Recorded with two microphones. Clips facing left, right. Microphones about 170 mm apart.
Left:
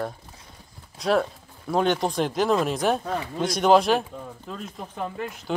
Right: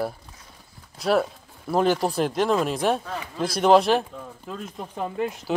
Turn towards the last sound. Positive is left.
turn(degrees=-20)  # may be behind; listen again after turning